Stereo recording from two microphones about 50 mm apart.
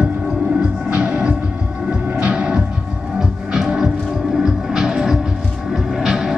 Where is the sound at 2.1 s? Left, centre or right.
Centre.